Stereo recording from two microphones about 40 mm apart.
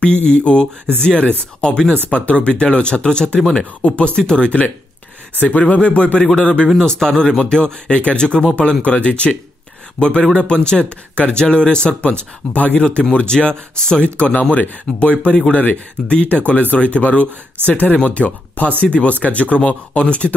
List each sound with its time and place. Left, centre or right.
0.0 s speech: left
5.4 s speech: left
7.0 s speech: centre
14.0 s speech: left
18.8 s speech: left